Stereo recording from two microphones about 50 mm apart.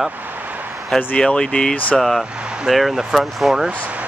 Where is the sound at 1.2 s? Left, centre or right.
Centre.